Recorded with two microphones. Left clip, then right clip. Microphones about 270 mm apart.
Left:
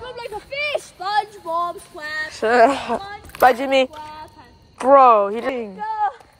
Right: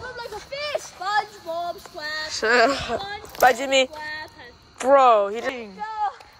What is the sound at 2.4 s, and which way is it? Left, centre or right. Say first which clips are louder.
Speech: left 4 dB; centre.